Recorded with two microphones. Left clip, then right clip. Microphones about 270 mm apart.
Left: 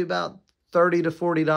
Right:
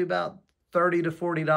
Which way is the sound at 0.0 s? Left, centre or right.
Centre.